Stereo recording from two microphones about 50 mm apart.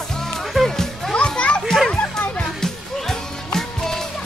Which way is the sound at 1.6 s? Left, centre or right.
Centre.